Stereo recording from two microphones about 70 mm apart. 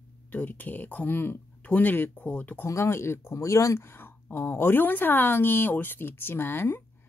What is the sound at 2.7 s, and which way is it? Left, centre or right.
A woman's voice, left.